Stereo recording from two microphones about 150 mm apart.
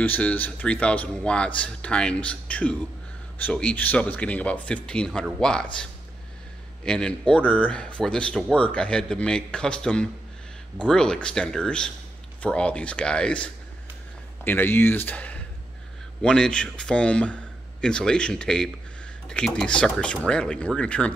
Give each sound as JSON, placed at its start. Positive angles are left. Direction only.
{"t": 0.0, "sound": "speech", "side_deg": 10}